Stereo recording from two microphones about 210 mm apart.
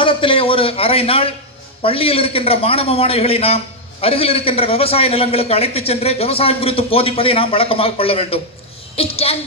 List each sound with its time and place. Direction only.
0.0 s a man's voice: 25° left (ahead or behind)